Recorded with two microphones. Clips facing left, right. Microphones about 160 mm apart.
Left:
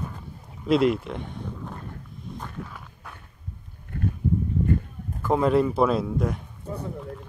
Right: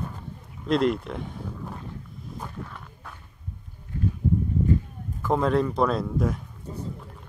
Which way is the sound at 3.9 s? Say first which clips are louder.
Even; 60° left (ahead or behind).